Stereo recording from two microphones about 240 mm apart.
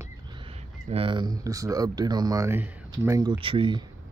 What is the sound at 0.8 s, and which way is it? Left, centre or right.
Speech, right.